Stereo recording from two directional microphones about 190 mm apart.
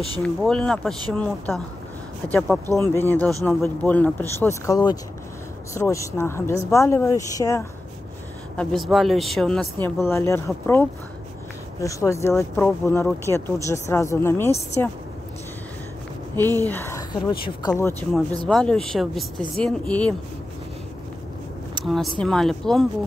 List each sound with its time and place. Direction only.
0.2 s speech: 5° left (ahead or behind)
8.5 s speech: centre (ahead or behind)
16.3 s speech: 10° left (ahead or behind)
18.5 s speech: 5° left (ahead or behind)
21.8 s speech: centre (ahead or behind)